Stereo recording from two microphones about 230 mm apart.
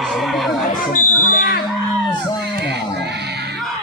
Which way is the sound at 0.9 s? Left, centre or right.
Left.